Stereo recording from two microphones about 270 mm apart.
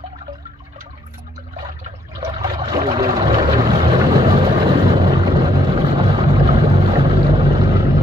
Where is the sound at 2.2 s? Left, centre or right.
Centre.